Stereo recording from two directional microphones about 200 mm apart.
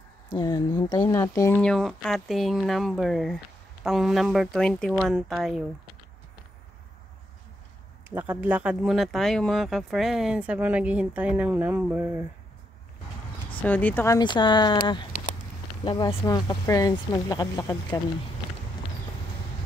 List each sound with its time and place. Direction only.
0.3 s speech: 20° left (ahead or behind)
1.6 s speech: 5° left (ahead or behind)
8.1 s speech: 10° right (ahead or behind)
13.6 s speech: 10° left (ahead or behind)